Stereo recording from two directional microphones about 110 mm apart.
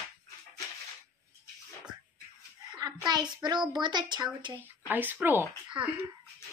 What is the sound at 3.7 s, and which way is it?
Speech, 40° right (ahead or behind).